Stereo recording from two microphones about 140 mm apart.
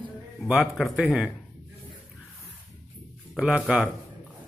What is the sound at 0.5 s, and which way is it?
Speech, 5° right (ahead or behind).